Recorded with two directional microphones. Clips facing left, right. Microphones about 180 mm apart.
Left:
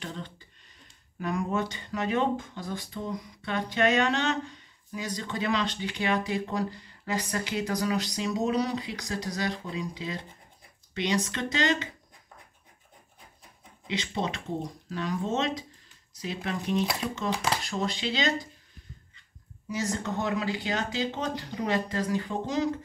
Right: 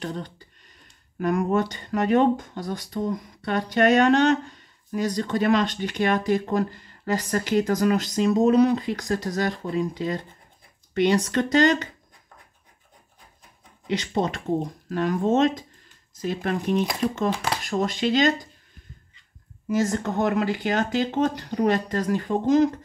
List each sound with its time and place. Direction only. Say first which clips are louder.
0.0 s a sound: right 7 dB; 45° right (ahead or behind)
1.2 s speech: right 7 dB; 50° right (ahead or behind)
13.8 s speech: right 6 dB; 45° right (ahead or behind)
20.0 s speech: right 6 dB; 50° right (ahead or behind)